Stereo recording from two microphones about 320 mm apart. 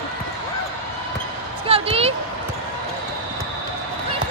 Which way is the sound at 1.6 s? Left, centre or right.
Centre.